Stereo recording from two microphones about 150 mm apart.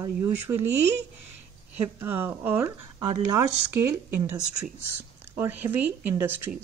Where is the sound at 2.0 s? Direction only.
15° right (ahead or behind).